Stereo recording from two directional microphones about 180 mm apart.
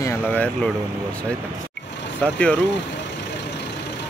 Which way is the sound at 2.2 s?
5° left (ahead or behind).